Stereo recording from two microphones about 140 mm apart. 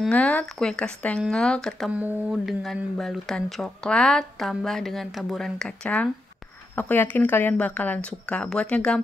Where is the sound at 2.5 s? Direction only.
Centre (ahead or behind).